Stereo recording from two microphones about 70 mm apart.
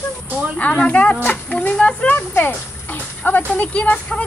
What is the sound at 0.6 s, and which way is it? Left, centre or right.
Speech, left.